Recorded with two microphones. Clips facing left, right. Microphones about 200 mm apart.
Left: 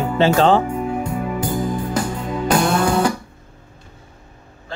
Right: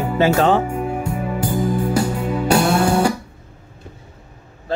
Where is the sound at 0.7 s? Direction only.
10° right (ahead or behind).